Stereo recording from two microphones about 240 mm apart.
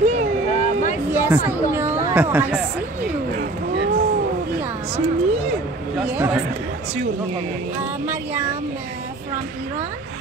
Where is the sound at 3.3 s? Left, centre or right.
Right.